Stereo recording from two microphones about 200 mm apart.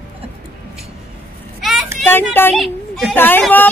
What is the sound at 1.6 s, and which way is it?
Vehicle, centre (ahead or behind).